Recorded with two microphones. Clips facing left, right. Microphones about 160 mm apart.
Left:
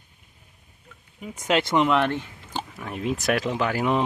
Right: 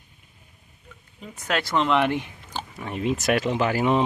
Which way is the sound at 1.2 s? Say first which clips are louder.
Left 4 dB; 20° left (ahead or behind).